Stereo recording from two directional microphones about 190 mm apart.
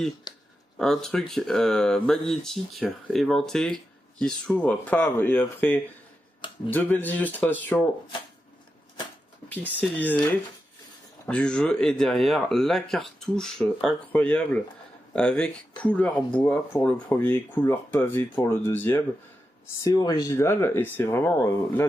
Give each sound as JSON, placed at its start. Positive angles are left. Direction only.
{"t": 0.3, "sound": "a sound", "side_deg": 20}
{"t": 0.7, "sound": "speech", "side_deg": 0}
{"t": 9.8, "sound": "speech", "side_deg": 10}
{"t": 11.2, "sound": "speech", "side_deg": 5}